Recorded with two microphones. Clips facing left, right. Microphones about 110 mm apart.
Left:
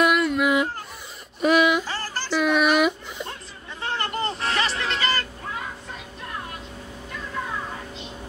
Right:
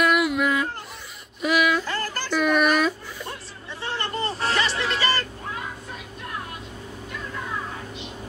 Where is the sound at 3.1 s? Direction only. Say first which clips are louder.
Left 1 dB; 20° left (ahead or behind).